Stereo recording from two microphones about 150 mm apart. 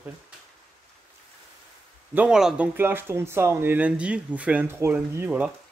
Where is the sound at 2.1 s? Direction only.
5° right (ahead or behind).